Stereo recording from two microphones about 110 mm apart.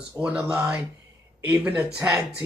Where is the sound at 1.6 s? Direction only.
10° right (ahead or behind).